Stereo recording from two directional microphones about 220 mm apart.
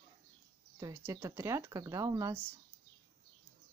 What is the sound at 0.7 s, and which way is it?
Speech, 15° right (ahead or behind).